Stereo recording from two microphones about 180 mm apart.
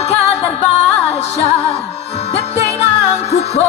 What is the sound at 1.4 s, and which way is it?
Music, 40° left (ahead or behind).